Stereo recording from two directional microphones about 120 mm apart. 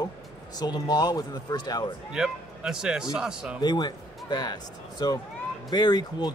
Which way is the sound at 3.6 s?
40° left (ahead or behind).